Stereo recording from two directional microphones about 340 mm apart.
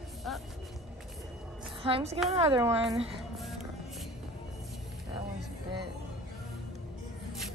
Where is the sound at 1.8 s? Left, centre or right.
Centre.